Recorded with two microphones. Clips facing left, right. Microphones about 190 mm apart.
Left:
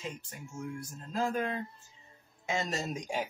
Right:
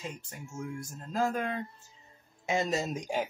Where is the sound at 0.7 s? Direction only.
45° right (ahead or behind).